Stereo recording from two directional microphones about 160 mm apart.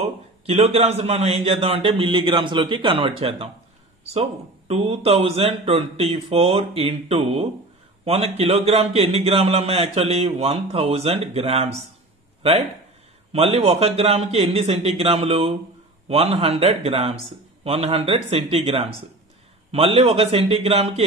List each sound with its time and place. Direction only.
0.0 s a man's voice: 40° right (ahead or behind)